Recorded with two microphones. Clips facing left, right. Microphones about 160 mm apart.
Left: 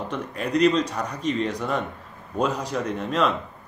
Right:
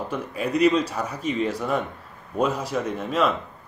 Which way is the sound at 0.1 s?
5° right (ahead or behind).